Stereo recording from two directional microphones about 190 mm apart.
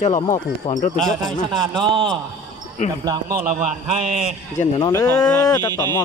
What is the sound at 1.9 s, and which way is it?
A man's voice, 25° right (ahead or behind).